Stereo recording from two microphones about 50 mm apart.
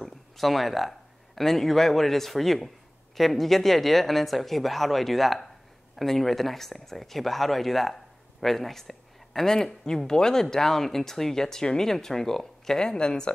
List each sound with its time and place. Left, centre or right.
0.0 s speech: centre